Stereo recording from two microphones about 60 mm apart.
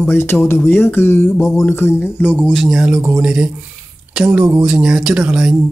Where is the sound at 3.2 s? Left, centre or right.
Right.